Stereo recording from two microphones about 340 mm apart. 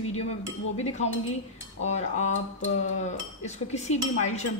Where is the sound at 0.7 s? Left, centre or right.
Centre.